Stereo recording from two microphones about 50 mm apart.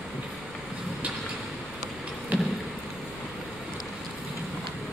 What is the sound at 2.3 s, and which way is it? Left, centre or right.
Vehicle, right.